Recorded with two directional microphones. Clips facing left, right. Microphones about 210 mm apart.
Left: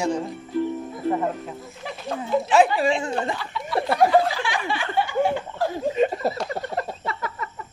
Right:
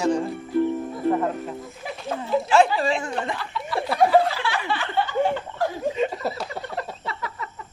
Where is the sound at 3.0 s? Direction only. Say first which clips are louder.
Left 2 dB; 30° left (ahead or behind).